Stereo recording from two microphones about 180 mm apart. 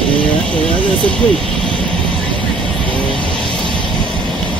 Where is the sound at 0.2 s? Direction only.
5° left (ahead or behind).